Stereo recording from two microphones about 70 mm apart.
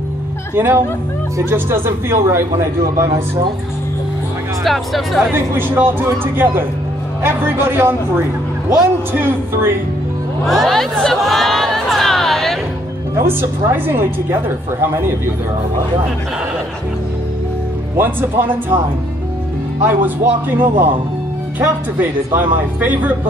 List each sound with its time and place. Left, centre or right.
0.6 s speech: right
4.6 s speech: centre
5.3 s speech: right
9.2 s speech: right
10.4 s a sound: centre
13.1 s speech: right
17.9 s speech: right
19.8 s speech: right